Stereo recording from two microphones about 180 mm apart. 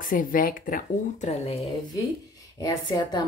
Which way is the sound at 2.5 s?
20° left (ahead or behind).